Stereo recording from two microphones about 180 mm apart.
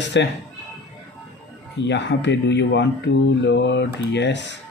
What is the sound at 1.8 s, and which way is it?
Speech, 75° left (ahead or behind).